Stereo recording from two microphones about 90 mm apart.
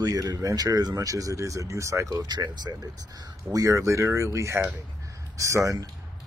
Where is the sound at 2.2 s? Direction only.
50° right (ahead or behind).